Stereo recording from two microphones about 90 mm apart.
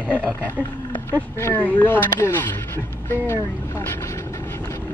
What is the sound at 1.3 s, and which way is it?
Speech, 30° left (ahead or behind).